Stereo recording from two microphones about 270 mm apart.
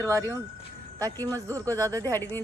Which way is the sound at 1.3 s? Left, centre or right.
Centre.